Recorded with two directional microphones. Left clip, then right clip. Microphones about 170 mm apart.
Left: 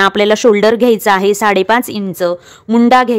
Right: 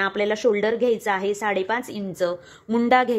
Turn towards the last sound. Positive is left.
turn(degrees=35)  # may be behind; listen again after turning